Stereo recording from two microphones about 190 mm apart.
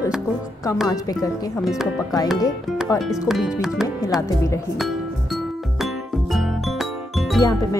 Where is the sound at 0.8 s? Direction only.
20° left (ahead or behind).